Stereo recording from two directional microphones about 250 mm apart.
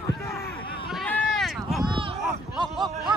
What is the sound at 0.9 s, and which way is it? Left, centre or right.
Run, centre.